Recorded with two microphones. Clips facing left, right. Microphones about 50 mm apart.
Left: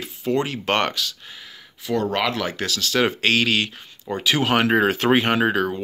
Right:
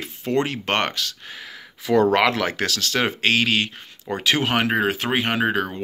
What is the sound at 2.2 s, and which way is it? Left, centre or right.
Speech, right.